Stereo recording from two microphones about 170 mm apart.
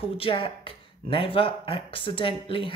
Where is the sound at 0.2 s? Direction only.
30° left (ahead or behind).